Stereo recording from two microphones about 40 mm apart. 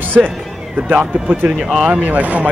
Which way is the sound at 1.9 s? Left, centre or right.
Right.